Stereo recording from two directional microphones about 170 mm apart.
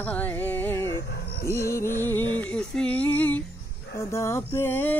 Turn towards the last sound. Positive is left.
turn(degrees=15)  # may be behind; listen again after turning